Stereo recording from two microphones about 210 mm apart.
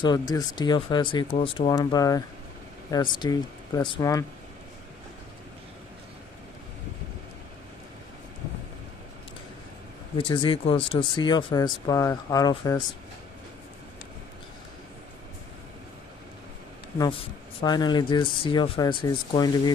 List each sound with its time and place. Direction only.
0.0 s speech: 20° left (ahead or behind)
10.1 s speech: 25° left (ahead or behind)
17.0 s speech: 25° left (ahead or behind)